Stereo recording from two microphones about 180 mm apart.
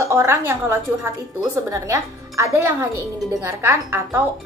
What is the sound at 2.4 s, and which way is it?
A woman's voice, 15° right (ahead or behind).